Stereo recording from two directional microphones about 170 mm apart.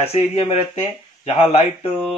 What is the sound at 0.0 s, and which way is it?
A man's voice, 35° left (ahead or behind).